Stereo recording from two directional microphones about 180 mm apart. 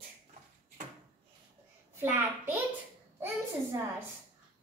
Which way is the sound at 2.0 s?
10° right (ahead or behind).